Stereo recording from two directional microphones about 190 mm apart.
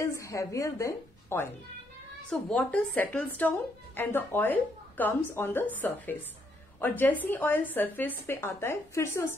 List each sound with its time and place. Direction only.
0.0 s a woman's voice: 15° left (ahead or behind)
2.2 s a woman's voice: 5° left (ahead or behind)